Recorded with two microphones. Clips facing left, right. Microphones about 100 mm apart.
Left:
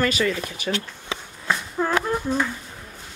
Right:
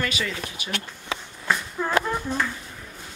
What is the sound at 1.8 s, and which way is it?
Speech, 25° left (ahead or behind).